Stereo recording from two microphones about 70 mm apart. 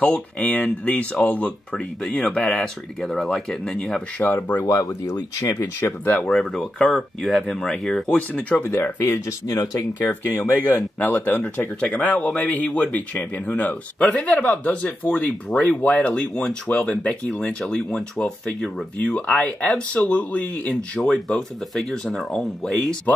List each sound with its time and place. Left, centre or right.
0.0 s speech: centre
3.0 s speech: centre
4.2 s speech: left
4.6 s speech: left
6.2 s speech: centre
8.5 s speech: left
9.5 s speech: left
10.5 s speech: left; by 19.1 s centre
19.1 s speech: centre
21.0 s speech: centre
23.1 s speech: left